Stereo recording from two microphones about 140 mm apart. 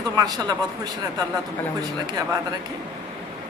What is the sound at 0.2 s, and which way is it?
Speech, 30° right (ahead or behind).